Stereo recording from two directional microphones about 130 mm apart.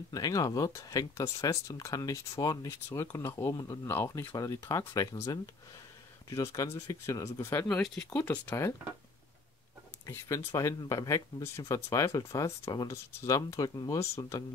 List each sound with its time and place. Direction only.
0.1 s speech: 30° left (ahead or behind)
7.7 s speech: 5° left (ahead or behind)
8.2 s speech: 15° left (ahead or behind)
10.0 s speech: 25° left (ahead or behind)